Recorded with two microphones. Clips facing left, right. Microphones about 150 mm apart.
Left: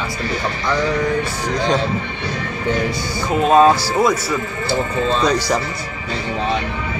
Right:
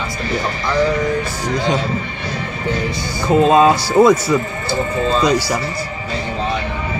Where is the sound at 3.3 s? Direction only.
20° right (ahead or behind).